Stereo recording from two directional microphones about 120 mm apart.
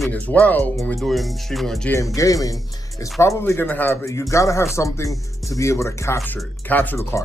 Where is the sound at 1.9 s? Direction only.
25° left (ahead or behind).